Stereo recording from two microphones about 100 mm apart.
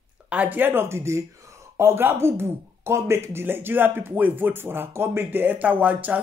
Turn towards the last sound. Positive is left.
turn(degrees=-15)  # may be behind; listen again after turning